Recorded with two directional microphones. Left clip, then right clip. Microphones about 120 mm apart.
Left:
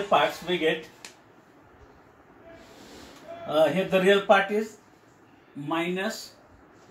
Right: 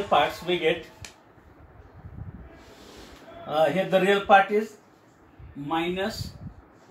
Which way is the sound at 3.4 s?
25° right (ahead or behind).